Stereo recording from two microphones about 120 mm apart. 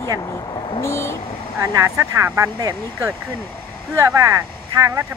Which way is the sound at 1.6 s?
30° right (ahead or behind).